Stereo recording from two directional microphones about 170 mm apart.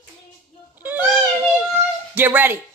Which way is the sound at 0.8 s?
10° right (ahead or behind).